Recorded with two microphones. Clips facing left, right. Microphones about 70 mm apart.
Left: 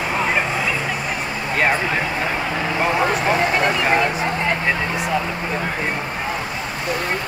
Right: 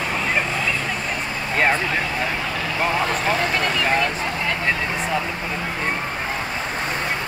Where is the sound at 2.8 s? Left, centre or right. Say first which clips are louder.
Left 2 dB; centre.